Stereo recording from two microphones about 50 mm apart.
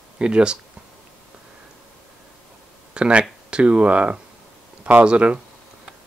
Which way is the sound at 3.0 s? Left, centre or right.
Right.